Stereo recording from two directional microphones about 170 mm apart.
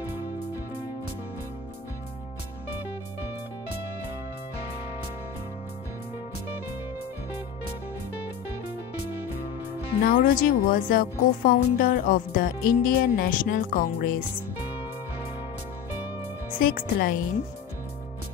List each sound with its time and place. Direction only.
10.0 s speech: 55° left (ahead or behind)
16.4 s a woman's voice: 55° left (ahead or behind)